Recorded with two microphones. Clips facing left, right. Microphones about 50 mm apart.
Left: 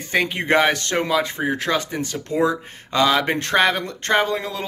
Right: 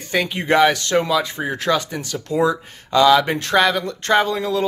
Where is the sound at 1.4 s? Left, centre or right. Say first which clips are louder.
Right 1 dB; centre.